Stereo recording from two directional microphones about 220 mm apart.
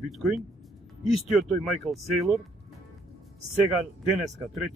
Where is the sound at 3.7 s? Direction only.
Centre (ahead or behind).